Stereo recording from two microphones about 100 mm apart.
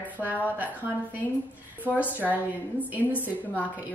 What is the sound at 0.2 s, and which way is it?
Speech, 15° right (ahead or behind).